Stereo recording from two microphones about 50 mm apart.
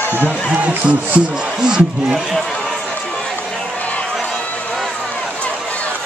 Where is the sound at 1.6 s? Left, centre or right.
Centre.